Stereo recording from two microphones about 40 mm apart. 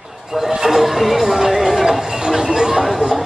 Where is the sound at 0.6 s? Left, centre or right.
Centre.